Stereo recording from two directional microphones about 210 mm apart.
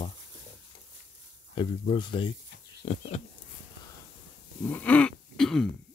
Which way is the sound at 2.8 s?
30° left (ahead or behind).